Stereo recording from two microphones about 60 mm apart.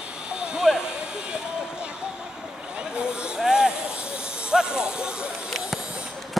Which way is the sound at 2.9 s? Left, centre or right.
Centre.